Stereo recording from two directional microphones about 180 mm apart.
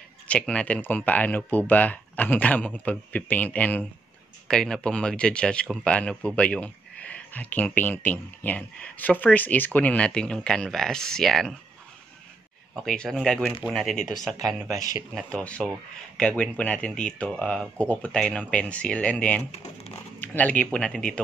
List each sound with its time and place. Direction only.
0.3 s speech: 5° left (ahead or behind)
12.7 s speech: 5° left (ahead or behind)
19.5 s speech: 35° left (ahead or behind)
20.2 s speech: 10° left (ahead or behind)